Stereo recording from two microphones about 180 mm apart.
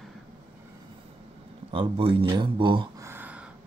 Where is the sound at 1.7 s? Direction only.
30° right (ahead or behind).